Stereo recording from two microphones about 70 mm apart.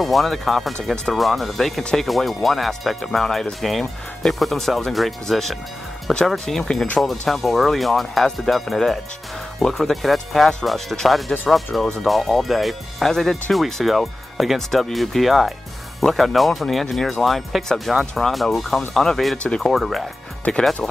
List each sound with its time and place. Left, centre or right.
0.0 s speech: centre
19.3 s speech: centre
19.6 s speech: centre